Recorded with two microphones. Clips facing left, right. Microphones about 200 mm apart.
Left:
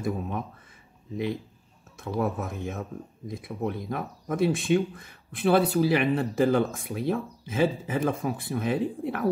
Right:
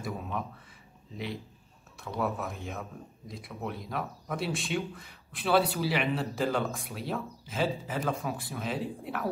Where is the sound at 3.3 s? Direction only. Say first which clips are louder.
Left 7 dB; 50° left (ahead or behind).